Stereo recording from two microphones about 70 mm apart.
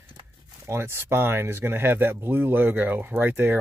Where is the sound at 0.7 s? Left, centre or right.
Right.